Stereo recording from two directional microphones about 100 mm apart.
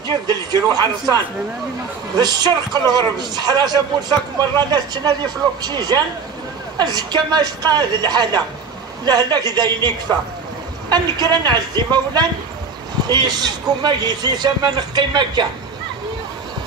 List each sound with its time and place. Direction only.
0.3 s a man's voice: 45° right (ahead or behind)
2.1 s a man's voice: 40° right (ahead or behind)